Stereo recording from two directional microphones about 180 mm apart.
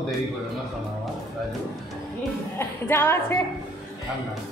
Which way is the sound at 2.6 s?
15° left (ahead or behind).